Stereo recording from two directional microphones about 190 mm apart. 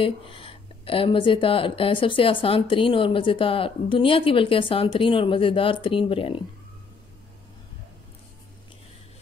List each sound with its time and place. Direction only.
0.0 s speech: 30° left (ahead or behind)